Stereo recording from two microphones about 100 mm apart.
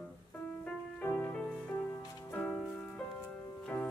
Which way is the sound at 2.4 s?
5° left (ahead or behind).